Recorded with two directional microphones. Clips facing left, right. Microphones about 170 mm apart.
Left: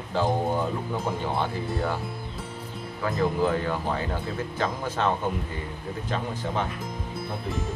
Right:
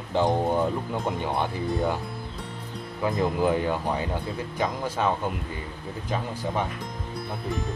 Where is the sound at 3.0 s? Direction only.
15° right (ahead or behind).